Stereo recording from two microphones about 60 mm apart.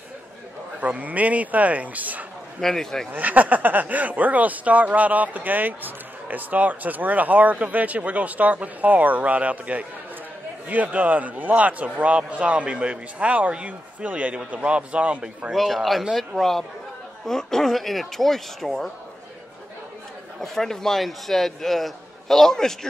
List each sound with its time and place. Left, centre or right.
0.7 s speech: right
2.6 s a man's voice: centre
3.1 s speech: right
15.5 s speech: centre
20.3 s a man's voice: centre